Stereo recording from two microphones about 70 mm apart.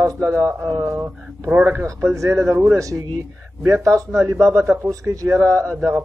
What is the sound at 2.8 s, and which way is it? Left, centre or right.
Speech, right.